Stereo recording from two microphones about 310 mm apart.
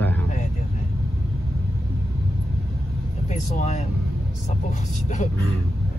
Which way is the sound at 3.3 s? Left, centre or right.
Left.